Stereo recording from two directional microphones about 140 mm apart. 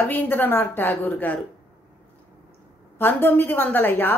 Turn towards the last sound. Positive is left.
turn(degrees=15)  # may be behind; listen again after turning